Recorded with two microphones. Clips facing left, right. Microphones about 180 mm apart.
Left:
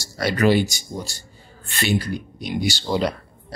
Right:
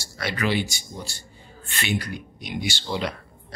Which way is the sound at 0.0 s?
40° left (ahead or behind).